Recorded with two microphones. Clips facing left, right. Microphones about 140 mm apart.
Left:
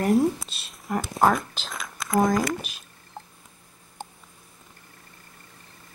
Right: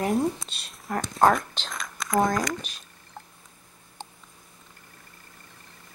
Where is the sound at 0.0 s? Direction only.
Centre (ahead or behind).